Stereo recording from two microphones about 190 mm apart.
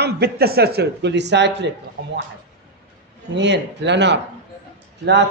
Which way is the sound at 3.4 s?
65° right (ahead or behind).